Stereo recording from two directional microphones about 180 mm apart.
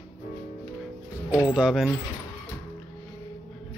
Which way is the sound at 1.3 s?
20° left (ahead or behind).